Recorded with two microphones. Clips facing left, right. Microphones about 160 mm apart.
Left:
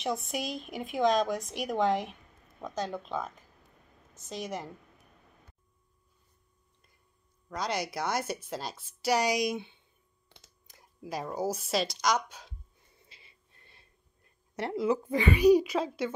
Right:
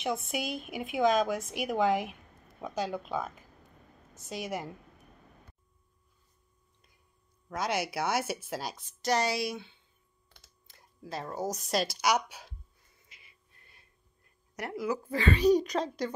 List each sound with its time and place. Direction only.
0.0 s speech: 5° right (ahead or behind)
7.4 s speech: 5° right (ahead or behind)
8.7 s a woman's voice: 10° left (ahead or behind); by 12.5 s 5° right (ahead or behind)
12.9 s a sound: 30° left (ahead or behind)
14.5 s a woman's voice: 25° left (ahead or behind); by 16.2 s 5° left (ahead or behind)